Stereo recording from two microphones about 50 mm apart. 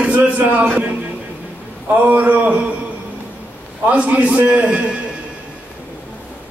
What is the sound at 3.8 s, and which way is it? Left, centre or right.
A man's voice, right.